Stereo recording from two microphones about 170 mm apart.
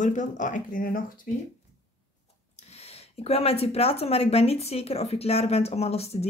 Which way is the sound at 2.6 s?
40° left (ahead or behind).